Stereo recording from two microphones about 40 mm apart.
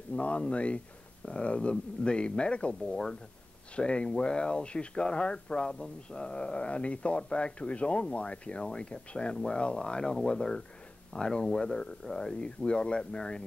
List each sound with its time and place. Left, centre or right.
0.1 s speech: left